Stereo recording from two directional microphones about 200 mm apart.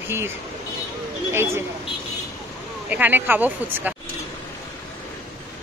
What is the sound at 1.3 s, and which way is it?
Speech, 15° right (ahead or behind).